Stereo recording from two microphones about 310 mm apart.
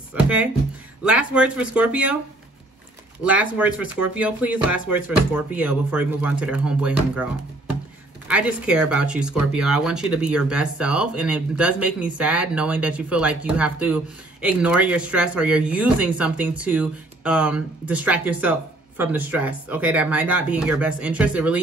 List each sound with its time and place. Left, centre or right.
0.1 s speech: centre
3.3 s speech: centre
8.3 s speech: centre